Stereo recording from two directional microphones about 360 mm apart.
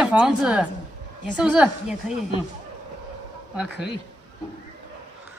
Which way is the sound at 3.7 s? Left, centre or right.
Left.